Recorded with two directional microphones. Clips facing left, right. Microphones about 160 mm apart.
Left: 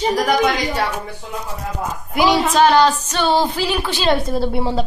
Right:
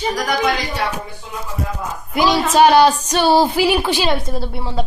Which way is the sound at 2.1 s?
15° left (ahead or behind).